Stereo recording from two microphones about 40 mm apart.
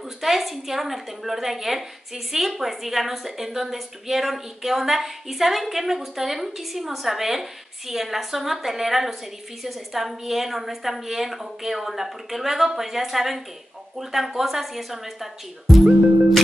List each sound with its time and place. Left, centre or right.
0.2 s a woman's voice: centre
15.7 s music: centre